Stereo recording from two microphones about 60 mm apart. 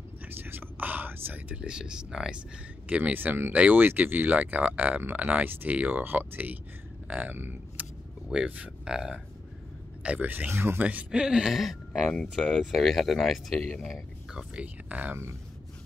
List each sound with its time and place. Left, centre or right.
0.4 s whispering: right
1.6 s speech: centre
2.9 s speech: right
7.8 s vehicle: right
8.3 s speech: centre
10.0 s speech: right
10.5 s speech: right
10.8 s speech: right
11.1 s speech: centre
12.2 s speech: centre
12.7 s speech: centre
14.3 s speech: centre